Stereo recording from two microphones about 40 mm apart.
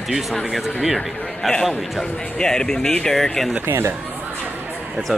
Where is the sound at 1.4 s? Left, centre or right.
Centre.